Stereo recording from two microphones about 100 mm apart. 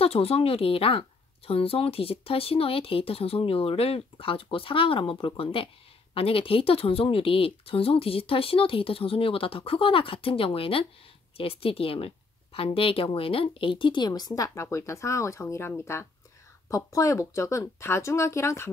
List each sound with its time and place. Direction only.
0.0 s speech: 80° left; by 18.7 s 25° left (ahead or behind)